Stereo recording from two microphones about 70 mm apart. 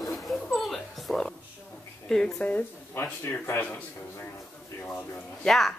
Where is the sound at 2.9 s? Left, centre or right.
Left.